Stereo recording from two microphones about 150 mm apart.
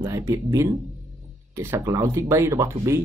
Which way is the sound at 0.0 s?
20° right (ahead or behind).